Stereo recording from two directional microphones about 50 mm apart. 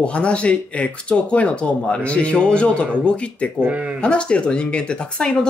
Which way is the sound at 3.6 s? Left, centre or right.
Right.